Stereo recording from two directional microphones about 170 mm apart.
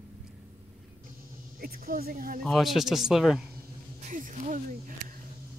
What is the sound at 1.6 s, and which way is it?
Speech, 60° right (ahead or behind).